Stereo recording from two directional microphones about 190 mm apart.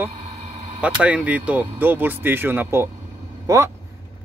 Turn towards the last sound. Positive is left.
turn(degrees=-15)  # may be behind; listen again after turning